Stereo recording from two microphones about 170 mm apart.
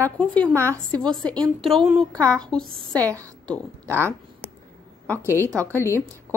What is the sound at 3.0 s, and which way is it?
A woman's voice, 20° right (ahead or behind).